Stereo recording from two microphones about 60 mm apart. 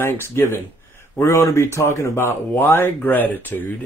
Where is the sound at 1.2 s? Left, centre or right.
Left.